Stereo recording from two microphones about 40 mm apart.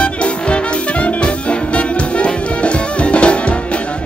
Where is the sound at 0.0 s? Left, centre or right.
Left.